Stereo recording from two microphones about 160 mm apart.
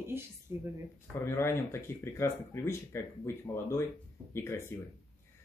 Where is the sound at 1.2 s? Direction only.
15° left (ahead or behind).